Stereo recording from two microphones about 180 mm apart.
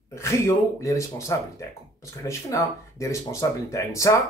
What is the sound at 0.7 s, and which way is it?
Speech, 15° left (ahead or behind).